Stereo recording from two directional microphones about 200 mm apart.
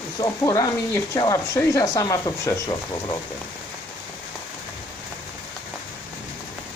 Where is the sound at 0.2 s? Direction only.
15° left (ahead or behind).